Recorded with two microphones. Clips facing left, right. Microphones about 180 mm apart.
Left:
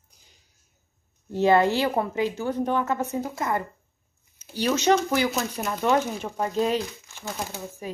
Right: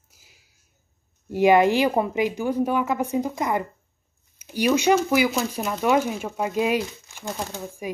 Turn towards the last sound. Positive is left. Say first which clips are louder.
# right 3 dB
turn(degrees=-15)  # may be behind; listen again after turning